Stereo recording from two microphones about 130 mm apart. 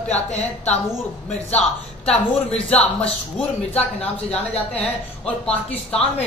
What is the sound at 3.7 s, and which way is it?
Speech, 50° left (ahead or behind).